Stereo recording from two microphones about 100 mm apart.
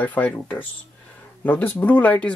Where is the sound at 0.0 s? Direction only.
15° left (ahead or behind).